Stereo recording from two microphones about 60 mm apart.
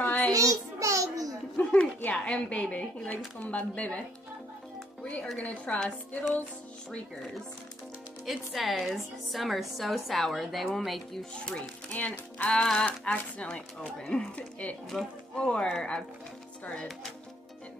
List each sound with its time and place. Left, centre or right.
0.0 s child singing: left
0.3 s a sound: right
1.6 s a sound: left
2.1 s speech: centre
5.0 s speech: centre
8.3 s a woman's voice: centre
11.9 s music: left
12.4 s speech: centre